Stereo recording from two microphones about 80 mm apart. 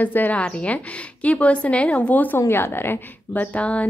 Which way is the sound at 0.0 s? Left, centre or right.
Left.